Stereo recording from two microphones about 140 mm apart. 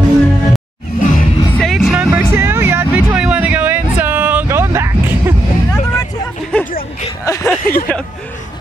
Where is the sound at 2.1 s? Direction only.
15° right (ahead or behind).